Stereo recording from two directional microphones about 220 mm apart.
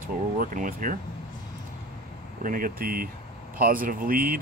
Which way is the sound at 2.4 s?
40° right (ahead or behind).